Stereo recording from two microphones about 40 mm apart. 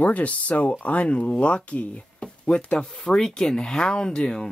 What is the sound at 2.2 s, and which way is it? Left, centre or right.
Speech, left.